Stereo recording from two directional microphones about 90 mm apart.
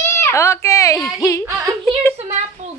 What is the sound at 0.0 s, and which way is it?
Speech, 30° left (ahead or behind).